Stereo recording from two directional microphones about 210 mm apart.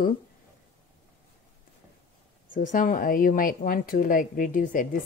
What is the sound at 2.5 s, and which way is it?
A woman's voice, 40° left (ahead or behind).